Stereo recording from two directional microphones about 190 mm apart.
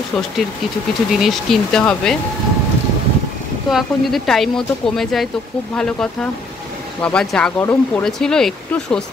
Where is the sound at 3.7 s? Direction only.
Centre (ahead or behind).